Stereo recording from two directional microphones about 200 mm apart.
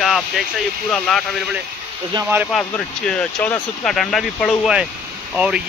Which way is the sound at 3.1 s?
5° left (ahead or behind).